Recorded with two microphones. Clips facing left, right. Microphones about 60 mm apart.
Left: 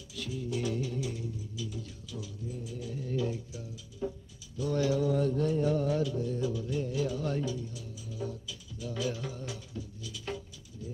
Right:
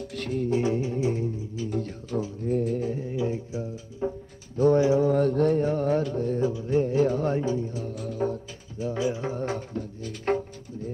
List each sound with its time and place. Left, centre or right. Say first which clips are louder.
0.0 s music: right 10 dB; right
0.5 s music: right 7 dB; right
3.1 s mantra: right 1 dB; right
3.3 s music: right 10 dB; right
4.7 s mantra: right 4 dB; right
5.0 s mantra: right 7 dB; right
5.7 s music: right 5 dB; right
7.9 s music: right 11 dB; right